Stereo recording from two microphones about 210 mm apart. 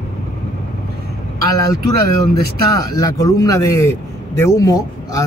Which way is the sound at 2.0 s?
50° right (ahead or behind).